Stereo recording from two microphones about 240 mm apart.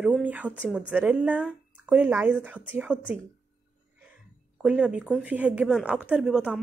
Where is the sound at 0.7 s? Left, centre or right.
Centre.